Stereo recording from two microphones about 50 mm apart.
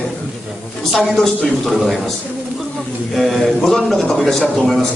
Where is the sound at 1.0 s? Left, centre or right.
Centre.